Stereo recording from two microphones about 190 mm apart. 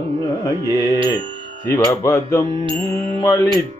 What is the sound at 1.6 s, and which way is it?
Mantra, 15° left (ahead or behind).